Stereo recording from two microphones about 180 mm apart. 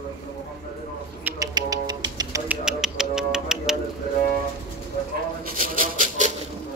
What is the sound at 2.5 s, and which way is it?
Music, 5° right (ahead or behind).